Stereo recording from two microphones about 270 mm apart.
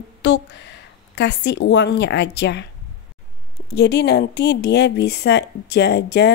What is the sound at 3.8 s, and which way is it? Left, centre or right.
Speech, left.